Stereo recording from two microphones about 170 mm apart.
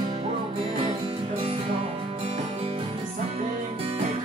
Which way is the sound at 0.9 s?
30° right (ahead or behind).